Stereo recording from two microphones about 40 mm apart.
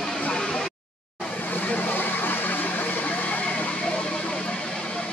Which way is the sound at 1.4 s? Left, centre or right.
Left.